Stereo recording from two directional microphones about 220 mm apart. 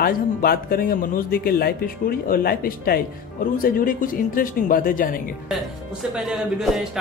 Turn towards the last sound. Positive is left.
turn(degrees=0)  # may be behind; listen again after turning